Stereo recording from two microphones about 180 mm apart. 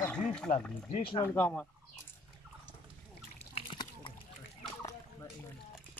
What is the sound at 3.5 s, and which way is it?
Splash, 25° left (ahead or behind).